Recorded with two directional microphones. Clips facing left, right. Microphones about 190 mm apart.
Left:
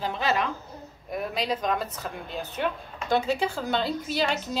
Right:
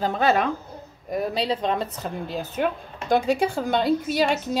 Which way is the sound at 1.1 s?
35° right (ahead or behind).